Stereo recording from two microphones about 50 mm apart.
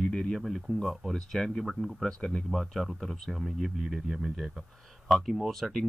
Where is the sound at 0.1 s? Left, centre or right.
Centre.